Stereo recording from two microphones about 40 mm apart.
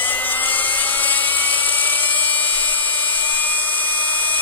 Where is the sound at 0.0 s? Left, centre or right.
Left.